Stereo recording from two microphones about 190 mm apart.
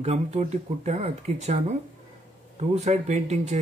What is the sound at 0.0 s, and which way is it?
Speech, 35° right (ahead or behind).